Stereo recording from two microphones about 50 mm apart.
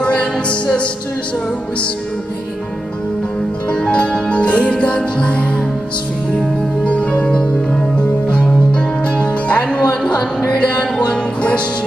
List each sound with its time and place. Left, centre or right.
0.0 s music: left
3.7 s music: left
6.8 s music: left